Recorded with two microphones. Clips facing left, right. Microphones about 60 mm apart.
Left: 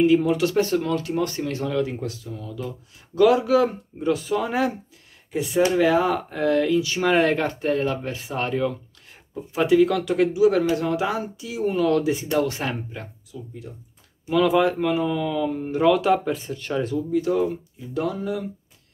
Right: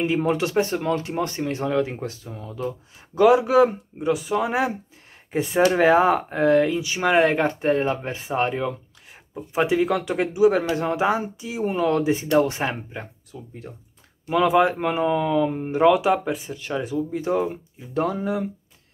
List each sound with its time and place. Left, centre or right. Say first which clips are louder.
0.0 s speech: left 4 dB; right
5.3 s speech: right 1 dB; right
13.3 s speech: left 1 dB; right
14.3 s speech: right 1 dB; right
17.1 s speech: left 3 dB; right